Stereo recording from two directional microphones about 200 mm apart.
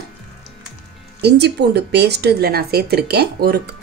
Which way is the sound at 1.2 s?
55° right (ahead or behind).